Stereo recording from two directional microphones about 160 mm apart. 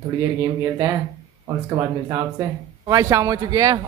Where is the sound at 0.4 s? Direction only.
20° right (ahead or behind).